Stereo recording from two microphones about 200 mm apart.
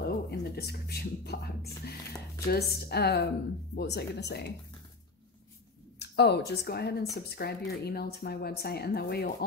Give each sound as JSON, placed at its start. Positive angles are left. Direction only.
{"t": 0.0, "sound": "a woman's voice", "side_deg": 55}
{"t": 5.9, "sound": "a sound", "side_deg": 55}
{"t": 6.5, "sound": "a woman's voice", "side_deg": 55}